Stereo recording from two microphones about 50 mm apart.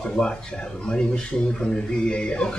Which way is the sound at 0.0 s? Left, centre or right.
Left.